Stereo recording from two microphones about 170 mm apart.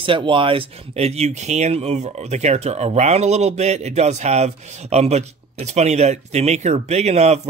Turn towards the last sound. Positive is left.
turn(degrees=-40)  # may be behind; listen again after turning